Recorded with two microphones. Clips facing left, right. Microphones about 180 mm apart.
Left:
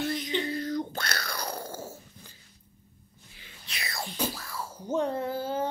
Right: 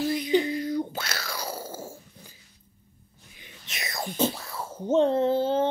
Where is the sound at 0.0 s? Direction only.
10° right (ahead or behind).